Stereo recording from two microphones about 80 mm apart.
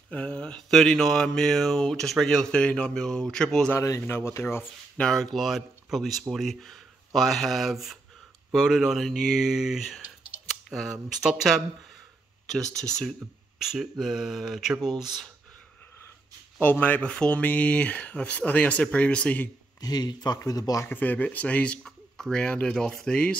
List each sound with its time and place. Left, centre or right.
0.1 s speech: centre
3.7 s speech: left
4.9 s speech: centre
13.7 s speech: centre
16.5 s speech: left
19.8 s speech: left
20.9 s speech: left
21.8 s speech: centre